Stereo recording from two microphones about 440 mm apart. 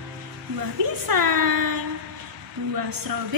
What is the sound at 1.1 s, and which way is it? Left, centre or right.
Speech, right.